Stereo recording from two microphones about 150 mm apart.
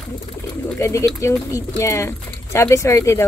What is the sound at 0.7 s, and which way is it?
Speech, 20° left (ahead or behind).